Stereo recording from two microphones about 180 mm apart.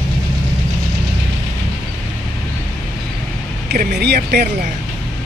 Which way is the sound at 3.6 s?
65° right (ahead or behind).